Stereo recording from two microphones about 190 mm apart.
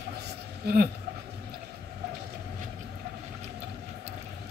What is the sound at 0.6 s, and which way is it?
Speech, 55° right (ahead or behind).